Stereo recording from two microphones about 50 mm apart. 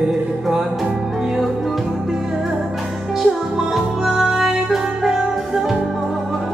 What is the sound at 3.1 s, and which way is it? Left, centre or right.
Music, centre.